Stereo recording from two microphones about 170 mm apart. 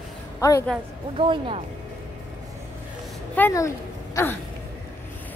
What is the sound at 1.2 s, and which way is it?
Speech, 35° right (ahead or behind).